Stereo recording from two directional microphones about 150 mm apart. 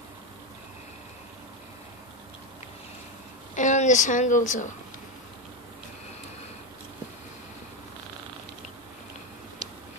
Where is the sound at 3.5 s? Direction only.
55° left (ahead or behind).